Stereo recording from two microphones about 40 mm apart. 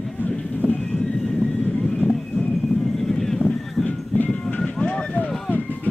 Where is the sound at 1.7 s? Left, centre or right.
Left.